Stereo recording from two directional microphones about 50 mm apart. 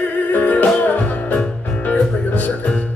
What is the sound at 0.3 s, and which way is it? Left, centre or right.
Music, left.